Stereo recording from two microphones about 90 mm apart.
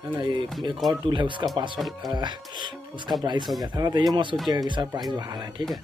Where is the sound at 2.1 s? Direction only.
55° right (ahead or behind).